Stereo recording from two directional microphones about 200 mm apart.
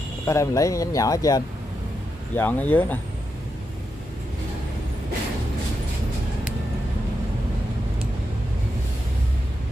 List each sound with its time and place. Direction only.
0.3 s speech: 15° left (ahead or behind)